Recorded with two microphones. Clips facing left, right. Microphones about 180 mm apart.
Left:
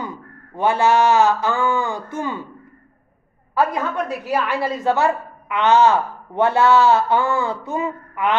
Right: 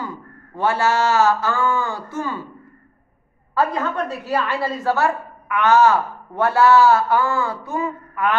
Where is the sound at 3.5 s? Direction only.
10° left (ahead or behind).